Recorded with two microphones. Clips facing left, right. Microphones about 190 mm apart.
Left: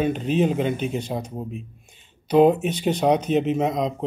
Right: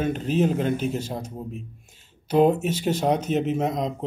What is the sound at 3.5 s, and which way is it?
Speech, 60° left (ahead or behind).